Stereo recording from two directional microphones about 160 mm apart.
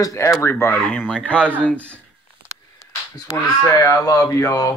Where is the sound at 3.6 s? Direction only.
20° left (ahead or behind).